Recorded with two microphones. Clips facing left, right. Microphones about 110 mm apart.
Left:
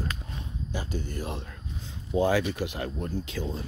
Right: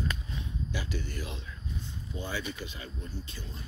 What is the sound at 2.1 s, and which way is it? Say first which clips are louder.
Speech: left 13 dB; 90° left.